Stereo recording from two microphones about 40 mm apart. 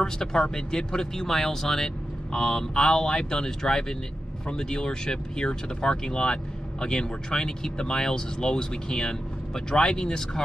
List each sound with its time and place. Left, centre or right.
0.0 s speech: centre
2.3 s speech: left